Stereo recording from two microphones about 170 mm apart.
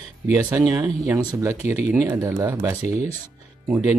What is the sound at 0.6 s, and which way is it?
Speech, 20° right (ahead or behind).